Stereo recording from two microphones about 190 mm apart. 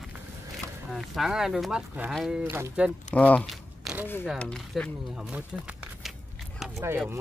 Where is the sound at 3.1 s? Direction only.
5° left (ahead or behind).